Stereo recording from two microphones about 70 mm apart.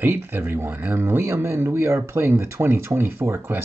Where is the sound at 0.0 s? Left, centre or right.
Right.